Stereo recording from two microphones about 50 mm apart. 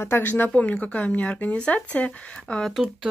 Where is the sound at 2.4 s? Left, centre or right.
Centre.